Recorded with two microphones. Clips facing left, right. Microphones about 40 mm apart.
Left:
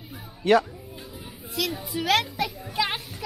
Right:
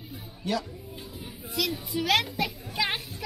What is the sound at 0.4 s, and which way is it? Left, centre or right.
Speech, left.